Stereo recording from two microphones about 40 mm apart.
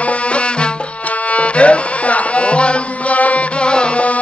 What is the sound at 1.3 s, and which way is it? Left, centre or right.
Music, left.